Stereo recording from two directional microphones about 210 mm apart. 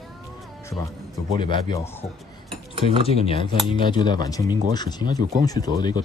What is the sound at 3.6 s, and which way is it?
Speech, 20° left (ahead or behind).